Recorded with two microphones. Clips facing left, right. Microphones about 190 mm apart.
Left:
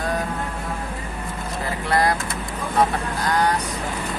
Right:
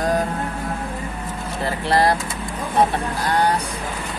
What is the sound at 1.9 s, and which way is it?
Speech, 30° right (ahead or behind).